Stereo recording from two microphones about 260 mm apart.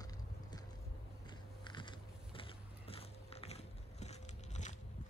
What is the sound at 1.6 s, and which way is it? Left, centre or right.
Biting, centre.